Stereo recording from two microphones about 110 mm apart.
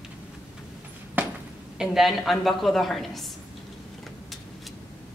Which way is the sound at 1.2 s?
15° right (ahead or behind).